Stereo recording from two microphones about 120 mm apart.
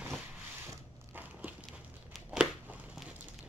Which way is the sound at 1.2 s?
15° right (ahead or behind).